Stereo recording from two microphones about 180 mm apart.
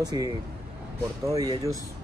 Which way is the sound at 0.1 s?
20° right (ahead or behind).